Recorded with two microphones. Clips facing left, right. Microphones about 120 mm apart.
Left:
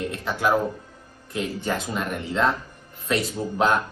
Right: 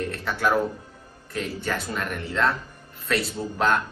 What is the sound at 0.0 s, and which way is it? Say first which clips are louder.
Speech: left 1 dB; 15° left (ahead or behind).